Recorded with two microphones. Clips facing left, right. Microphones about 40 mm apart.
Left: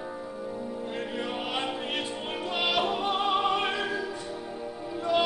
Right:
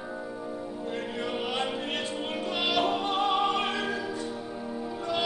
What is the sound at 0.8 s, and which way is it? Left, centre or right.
Music, centre.